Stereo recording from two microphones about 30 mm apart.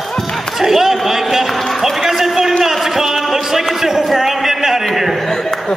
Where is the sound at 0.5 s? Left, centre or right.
Centre.